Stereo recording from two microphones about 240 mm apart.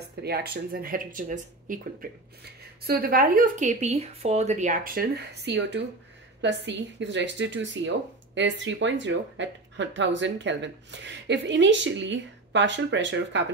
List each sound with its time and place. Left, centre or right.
0.1 s speech: right